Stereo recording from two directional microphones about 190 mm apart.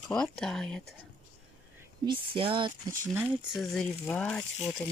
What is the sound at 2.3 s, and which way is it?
Speech, 25° right (ahead or behind).